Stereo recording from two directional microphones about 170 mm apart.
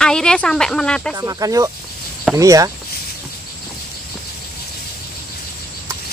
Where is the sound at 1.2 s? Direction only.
20° right (ahead or behind).